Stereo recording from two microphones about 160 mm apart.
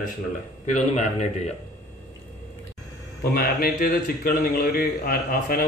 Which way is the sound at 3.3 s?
70° left (ahead or behind).